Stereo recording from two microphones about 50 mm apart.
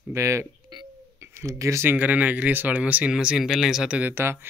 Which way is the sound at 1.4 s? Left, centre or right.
Right.